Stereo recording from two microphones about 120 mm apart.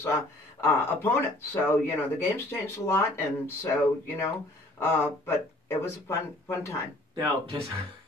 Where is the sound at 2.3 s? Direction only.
20° left (ahead or behind).